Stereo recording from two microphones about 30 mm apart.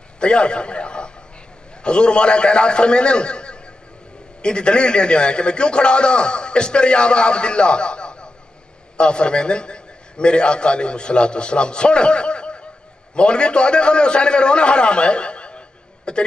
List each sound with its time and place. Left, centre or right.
0.2 s a man's voice: left